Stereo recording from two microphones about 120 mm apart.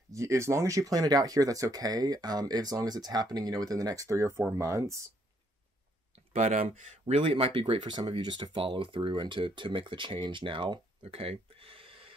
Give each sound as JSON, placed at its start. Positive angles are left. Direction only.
{"t": 0.1, "sound": "speech", "side_deg": -25}
{"t": 6.1, "sound": "speech", "side_deg": -70}